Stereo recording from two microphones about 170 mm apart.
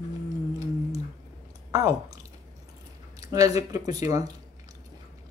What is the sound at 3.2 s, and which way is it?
Speech, 20° right (ahead or behind).